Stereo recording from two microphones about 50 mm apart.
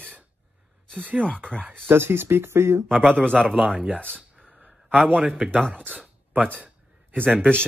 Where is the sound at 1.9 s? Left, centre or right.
Right.